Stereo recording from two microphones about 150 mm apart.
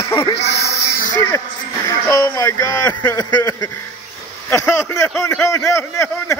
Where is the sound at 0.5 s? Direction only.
90° left.